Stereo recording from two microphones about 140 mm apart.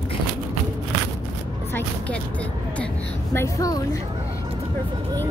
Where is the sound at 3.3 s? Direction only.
25° left (ahead or behind).